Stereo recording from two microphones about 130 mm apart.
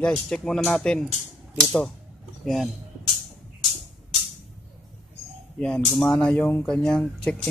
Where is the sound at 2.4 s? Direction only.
Centre (ahead or behind).